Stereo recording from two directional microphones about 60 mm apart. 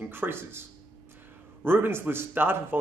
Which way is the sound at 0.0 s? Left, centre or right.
Right.